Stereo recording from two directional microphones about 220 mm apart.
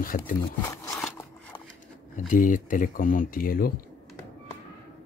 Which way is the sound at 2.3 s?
35° left (ahead or behind).